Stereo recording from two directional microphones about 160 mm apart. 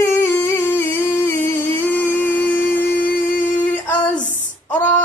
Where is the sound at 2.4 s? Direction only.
10° left (ahead or behind).